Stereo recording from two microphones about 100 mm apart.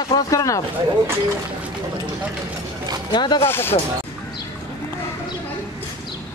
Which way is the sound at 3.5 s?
25° left (ahead or behind).